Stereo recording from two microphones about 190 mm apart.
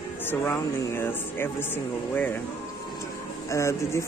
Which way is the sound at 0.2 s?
10° left (ahead or behind).